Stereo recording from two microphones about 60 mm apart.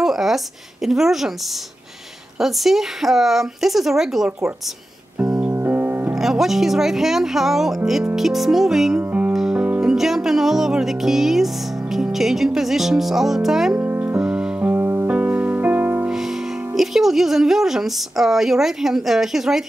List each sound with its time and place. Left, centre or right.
0.0 s a sound: centre
0.8 s a woman's voice: centre
2.3 s a woman's voice: centre
5.5 s keyboard: right
6.1 s a woman's voice: centre
9.3 s music: centre
12.4 s a woman's voice: centre
13.7 s music: right
14.2 s music: centre
14.6 s music: right
16.7 s a woman's voice: centre